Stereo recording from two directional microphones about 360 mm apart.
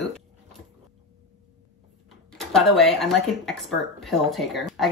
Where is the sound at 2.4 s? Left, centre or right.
Centre.